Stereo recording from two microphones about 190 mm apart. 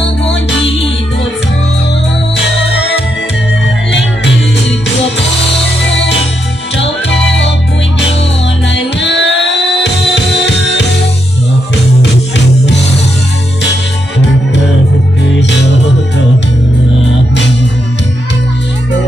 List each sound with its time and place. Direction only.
2.3 s music: 65° left (ahead or behind)
6.8 s music: 75° left (ahead or behind)
8.7 s music: 70° left (ahead or behind)
12.0 s music: 65° left (ahead or behind)